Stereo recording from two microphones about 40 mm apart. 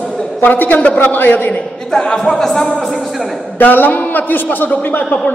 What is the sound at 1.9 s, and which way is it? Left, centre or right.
Speech, centre.